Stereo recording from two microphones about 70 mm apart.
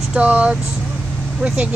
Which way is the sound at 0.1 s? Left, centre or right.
Centre.